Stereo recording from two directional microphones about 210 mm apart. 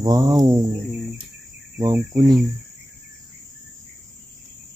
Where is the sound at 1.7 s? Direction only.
15° right (ahead or behind).